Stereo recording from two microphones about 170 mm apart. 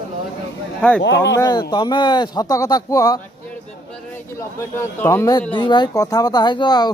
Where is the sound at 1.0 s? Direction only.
90° left.